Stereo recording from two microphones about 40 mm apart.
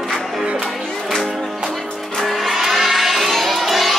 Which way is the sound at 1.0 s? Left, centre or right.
Centre.